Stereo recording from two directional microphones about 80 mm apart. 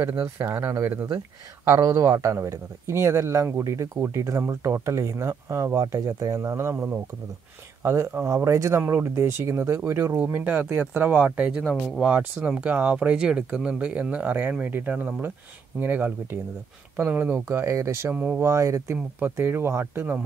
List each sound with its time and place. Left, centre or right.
0.1 s speech: right
18.1 s speech: centre
18.4 s speech: right